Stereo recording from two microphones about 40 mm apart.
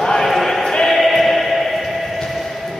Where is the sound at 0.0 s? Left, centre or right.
Centre.